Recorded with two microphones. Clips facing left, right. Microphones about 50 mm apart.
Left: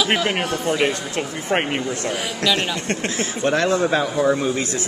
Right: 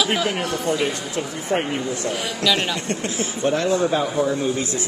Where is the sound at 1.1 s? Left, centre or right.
Left.